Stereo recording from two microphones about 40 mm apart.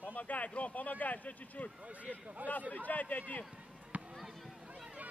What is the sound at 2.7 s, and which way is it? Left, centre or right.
Speech, left.